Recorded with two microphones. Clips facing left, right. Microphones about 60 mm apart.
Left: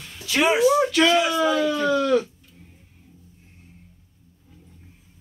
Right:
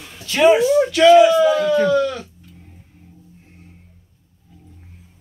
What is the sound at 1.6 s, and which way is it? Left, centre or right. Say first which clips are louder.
Speech: right 6 dB; right.